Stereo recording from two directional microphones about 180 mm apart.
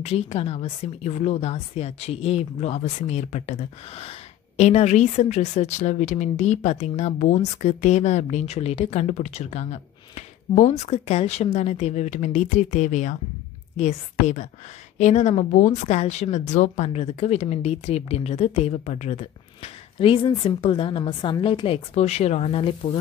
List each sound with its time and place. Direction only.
0.0 s a woman's voice: 35° left (ahead or behind)